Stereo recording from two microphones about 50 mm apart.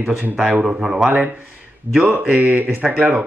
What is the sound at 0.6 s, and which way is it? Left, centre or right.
Speech, centre.